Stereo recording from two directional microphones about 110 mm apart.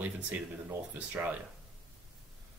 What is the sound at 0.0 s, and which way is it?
Speech, 15° right (ahead or behind).